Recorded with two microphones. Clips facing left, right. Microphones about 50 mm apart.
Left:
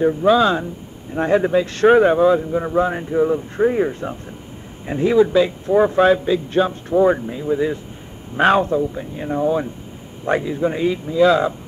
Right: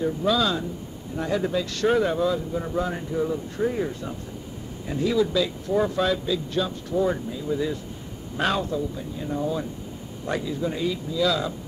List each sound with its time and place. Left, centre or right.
0.0 s speech: left